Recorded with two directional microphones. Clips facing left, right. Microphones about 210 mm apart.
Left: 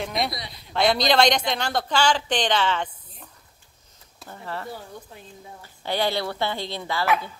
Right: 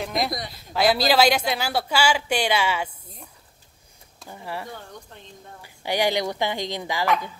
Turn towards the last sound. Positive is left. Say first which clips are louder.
# right 1 dB
turn(degrees=-15)  # may be behind; listen again after turning